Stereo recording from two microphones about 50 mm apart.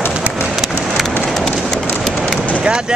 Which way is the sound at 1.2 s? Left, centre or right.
Centre.